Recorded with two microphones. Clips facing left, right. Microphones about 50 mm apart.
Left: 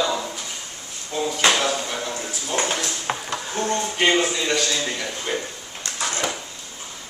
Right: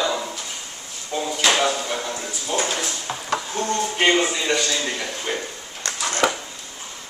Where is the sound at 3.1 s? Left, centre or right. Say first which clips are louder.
Left 4 dB; left.